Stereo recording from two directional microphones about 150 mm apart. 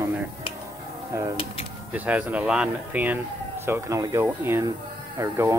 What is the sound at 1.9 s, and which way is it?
Speech, 10° right (ahead or behind).